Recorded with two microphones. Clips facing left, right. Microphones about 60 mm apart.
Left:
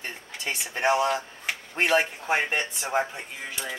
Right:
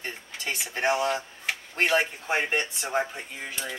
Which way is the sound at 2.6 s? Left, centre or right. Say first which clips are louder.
Left 1 dB; centre.